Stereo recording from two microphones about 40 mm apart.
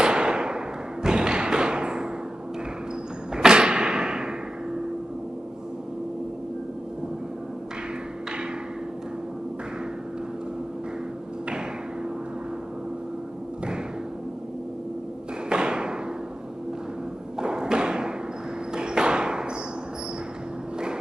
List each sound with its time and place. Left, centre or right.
0.0 s a sound: right
1.0 s thump: right
3.3 s thump: centre
15.5 s thump: right
17.4 s thump: centre
18.7 s a sound: right